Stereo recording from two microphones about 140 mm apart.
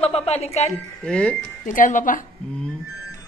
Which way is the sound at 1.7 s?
70° left (ahead or behind).